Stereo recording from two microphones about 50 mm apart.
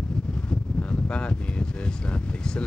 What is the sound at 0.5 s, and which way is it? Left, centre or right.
Speech, left.